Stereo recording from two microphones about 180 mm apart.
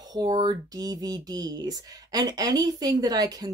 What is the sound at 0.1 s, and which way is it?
Speech, 25° right (ahead or behind).